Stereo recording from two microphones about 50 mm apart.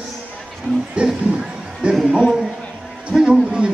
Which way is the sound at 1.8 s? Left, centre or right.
Right.